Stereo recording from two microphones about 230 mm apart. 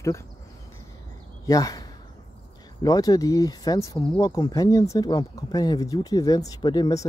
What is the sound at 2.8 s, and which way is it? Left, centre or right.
Speech, centre.